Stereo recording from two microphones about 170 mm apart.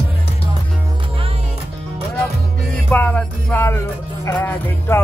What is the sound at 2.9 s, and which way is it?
Music, 10° left (ahead or behind).